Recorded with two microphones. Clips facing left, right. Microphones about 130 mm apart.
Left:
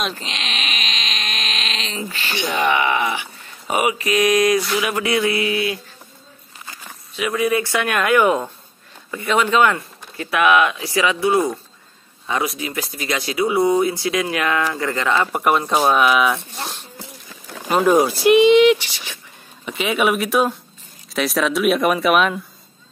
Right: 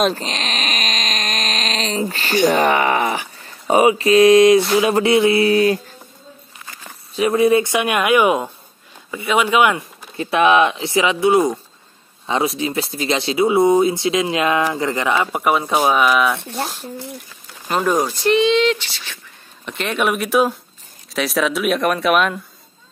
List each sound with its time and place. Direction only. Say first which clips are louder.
0.0 s speech: right 7 dB; 40° right (ahead or behind)
7.2 s speech: right 5 dB; 30° right (ahead or behind); by 9.8 s 15° right (ahead or behind)
10.1 s speech: right 2 dB; 25° right (ahead or behind)
15.3 s speech: even; centre (ahead or behind)
16.3 s speech: right 7 dB; 60° right (ahead or behind)
17.6 s speech: left 3 dB; 10° left (ahead or behind)